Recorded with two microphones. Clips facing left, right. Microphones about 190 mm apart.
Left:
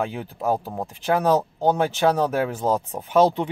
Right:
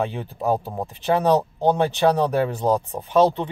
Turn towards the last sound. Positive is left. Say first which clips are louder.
# even
turn(degrees=10)  # may be behind; listen again after turning